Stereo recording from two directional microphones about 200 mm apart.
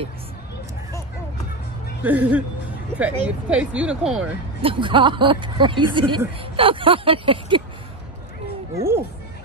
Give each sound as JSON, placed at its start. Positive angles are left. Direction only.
{"t": 2.0, "sound": "speech", "side_deg": -10}
{"t": 4.6, "sound": "speech", "side_deg": -25}
{"t": 8.7, "sound": "speech", "side_deg": -15}